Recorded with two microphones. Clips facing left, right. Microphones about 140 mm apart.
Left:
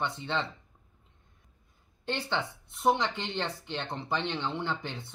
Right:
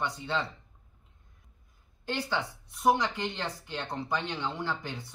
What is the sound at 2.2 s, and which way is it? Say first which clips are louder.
Speech: right 2 dB; 25° left (ahead or behind).